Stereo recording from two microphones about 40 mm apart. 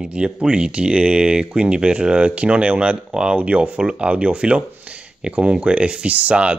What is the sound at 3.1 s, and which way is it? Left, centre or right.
Speech, right.